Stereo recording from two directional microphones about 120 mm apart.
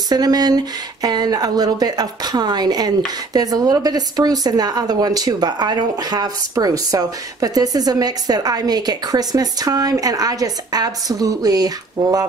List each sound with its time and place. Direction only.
0.1 s a woman's voice: 35° right (ahead or behind)